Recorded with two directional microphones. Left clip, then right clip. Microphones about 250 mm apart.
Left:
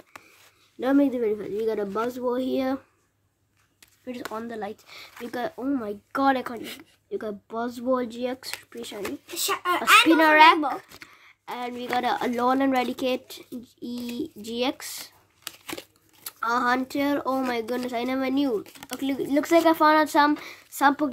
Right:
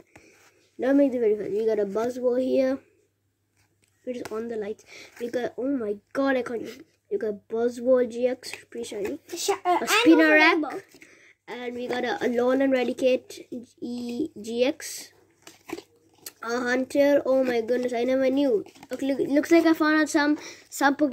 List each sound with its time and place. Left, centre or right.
0.7 s speech: centre
4.2 s speech: centre
6.6 s speech: left
7.1 s speech: centre
9.4 s speech: left
10.0 s speech: centre
15.4 s crumpling: left
16.3 s speech: centre